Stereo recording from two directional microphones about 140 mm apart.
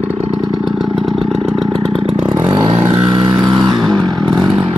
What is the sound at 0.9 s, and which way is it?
Vehicle, centre (ahead or behind).